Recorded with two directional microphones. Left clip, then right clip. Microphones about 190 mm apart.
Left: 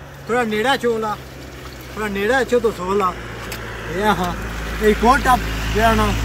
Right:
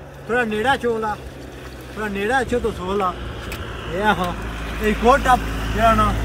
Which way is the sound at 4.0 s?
20° right (ahead or behind).